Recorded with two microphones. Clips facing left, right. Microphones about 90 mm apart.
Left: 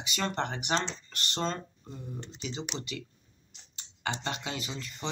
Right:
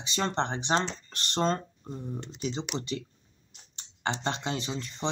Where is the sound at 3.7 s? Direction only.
35° right (ahead or behind).